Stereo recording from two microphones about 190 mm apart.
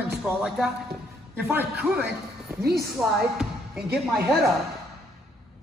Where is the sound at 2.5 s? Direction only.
10° right (ahead or behind).